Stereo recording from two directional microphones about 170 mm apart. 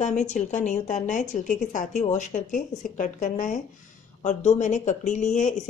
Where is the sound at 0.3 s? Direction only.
45° left (ahead or behind).